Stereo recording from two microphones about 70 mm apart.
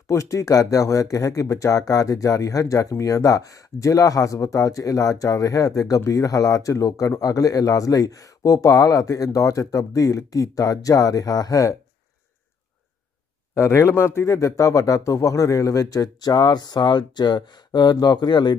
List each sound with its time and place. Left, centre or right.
0.1 s speech: left
13.6 s a man's voice: left
14.2 s speech: left